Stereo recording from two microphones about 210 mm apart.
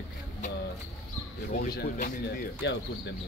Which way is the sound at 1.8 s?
45° left (ahead or behind).